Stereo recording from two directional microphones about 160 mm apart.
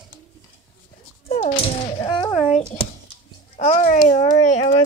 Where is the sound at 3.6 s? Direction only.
45° left (ahead or behind).